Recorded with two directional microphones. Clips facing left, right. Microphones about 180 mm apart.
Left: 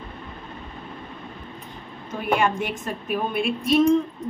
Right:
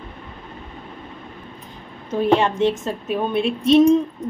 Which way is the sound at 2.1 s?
30° right (ahead or behind).